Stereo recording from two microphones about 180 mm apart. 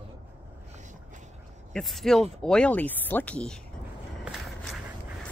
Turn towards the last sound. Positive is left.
turn(degrees=0)  # may be behind; listen again after turning